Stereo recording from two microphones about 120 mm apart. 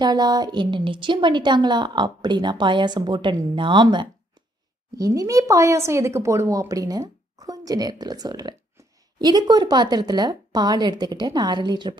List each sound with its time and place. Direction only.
0.0 s speech: 35° right (ahead or behind)
4.9 s speech: 30° right (ahead or behind)